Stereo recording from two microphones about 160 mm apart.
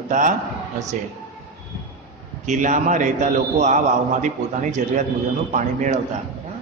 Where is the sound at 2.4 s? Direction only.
50° right (ahead or behind).